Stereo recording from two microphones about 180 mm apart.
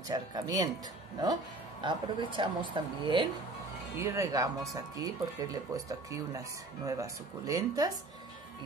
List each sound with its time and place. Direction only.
0.1 s speech: 20° right (ahead or behind)